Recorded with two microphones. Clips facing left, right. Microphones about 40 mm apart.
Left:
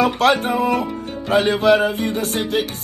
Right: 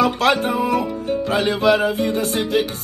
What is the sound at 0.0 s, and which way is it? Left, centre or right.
Music, left.